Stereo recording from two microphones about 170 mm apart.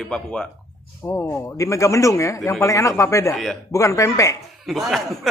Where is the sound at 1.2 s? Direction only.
15° left (ahead or behind).